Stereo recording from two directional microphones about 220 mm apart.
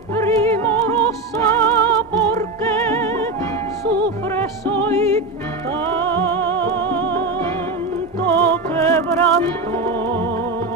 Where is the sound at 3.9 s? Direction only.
50° right (ahead or behind).